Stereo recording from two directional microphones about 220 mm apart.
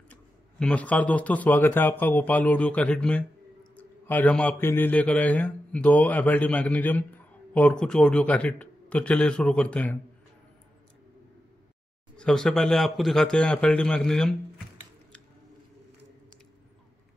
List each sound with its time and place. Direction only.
0.1 s a man's voice: 5° left (ahead or behind)
12.2 s speech: 5° left (ahead or behind)